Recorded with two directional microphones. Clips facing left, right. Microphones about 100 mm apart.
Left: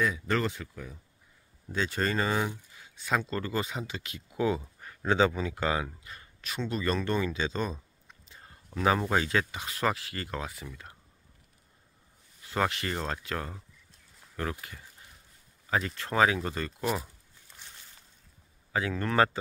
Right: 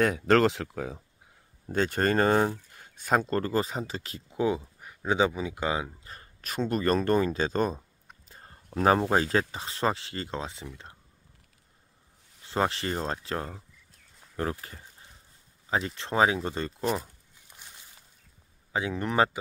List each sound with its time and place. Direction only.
0.0 s speech: 70° right (ahead or behind); by 1.0 s 90° right
1.7 s speech: 50° right (ahead or behind)
4.7 s speech: 15° right (ahead or behind)
6.0 s speech: 40° right (ahead or behind); by 10.7 s 25° right (ahead or behind)
12.4 s speech: 30° right (ahead or behind)
14.3 s a sound: 30° right (ahead or behind)
16.0 s speech: 25° right (ahead or behind)
16.8 s speech: centre (ahead or behind)
18.7 s speech: 20° right (ahead or behind)